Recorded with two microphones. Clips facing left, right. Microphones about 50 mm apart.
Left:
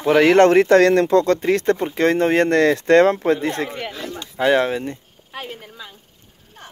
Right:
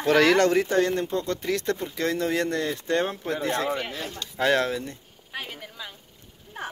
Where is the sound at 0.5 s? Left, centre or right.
Left.